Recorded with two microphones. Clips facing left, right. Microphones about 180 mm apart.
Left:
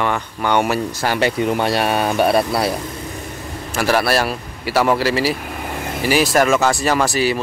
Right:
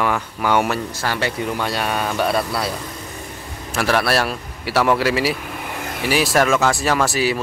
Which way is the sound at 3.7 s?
Centre (ahead or behind).